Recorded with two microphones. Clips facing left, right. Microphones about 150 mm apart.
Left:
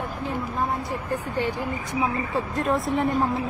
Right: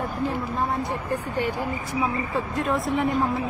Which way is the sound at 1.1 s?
15° right (ahead or behind).